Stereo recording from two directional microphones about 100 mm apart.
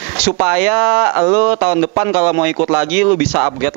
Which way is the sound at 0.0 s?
20° right (ahead or behind).